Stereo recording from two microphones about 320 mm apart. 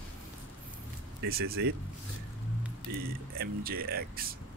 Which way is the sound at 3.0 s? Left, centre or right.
Right.